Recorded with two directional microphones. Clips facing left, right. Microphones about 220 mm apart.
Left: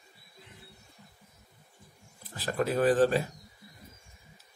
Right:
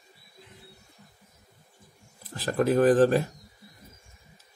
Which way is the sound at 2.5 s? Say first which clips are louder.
Right 5 dB; 45° right (ahead or behind).